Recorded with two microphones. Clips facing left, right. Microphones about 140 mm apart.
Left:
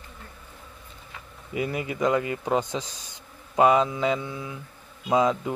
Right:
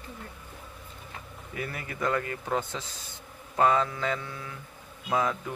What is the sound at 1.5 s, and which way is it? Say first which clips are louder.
Speech: left 8 dB; 20° left (ahead or behind).